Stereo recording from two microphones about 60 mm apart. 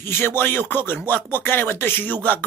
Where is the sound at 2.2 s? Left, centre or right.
Left.